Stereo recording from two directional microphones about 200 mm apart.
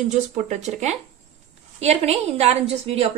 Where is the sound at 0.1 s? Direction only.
35° right (ahead or behind).